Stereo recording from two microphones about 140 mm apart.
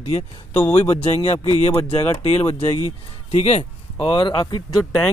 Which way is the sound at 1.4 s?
45° left (ahead or behind).